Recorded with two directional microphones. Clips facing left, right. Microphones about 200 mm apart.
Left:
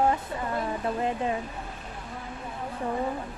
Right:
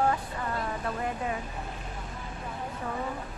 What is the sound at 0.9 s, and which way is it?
Speech, 25° left (ahead or behind).